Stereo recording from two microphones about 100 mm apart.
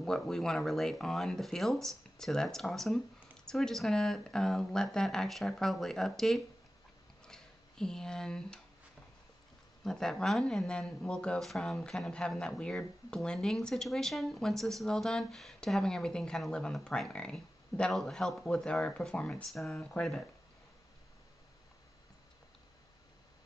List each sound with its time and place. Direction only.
0.0 s speech: 5° left (ahead or behind)
7.2 s a sound: 5° left (ahead or behind)
9.8 s speech: 5° left (ahead or behind)